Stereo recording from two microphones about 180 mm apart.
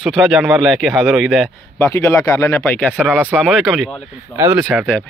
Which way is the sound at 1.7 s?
15° left (ahead or behind).